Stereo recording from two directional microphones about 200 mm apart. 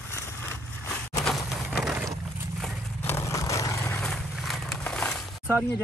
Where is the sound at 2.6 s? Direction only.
10° left (ahead or behind).